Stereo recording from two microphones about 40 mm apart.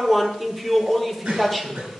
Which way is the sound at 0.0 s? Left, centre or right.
Centre.